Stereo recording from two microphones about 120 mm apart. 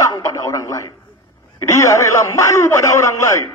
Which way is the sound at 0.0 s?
25° left (ahead or behind).